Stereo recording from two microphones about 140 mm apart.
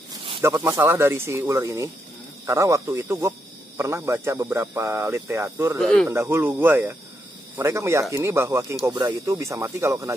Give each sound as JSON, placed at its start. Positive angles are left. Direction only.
{"t": 0.6, "sound": "speech", "side_deg": -15}
{"t": 5.8, "sound": "speech", "side_deg": 5}
{"t": 6.0, "sound": "speech", "side_deg": -20}